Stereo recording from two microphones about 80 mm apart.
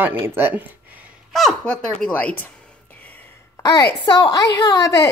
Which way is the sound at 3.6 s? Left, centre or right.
Left.